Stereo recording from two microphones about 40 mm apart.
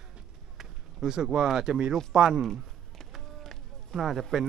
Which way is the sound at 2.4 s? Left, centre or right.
Centre.